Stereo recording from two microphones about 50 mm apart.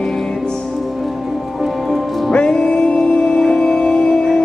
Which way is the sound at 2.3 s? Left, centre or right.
Centre.